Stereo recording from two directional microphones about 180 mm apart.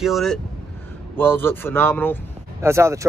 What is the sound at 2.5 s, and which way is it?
Speech, 15° right (ahead or behind).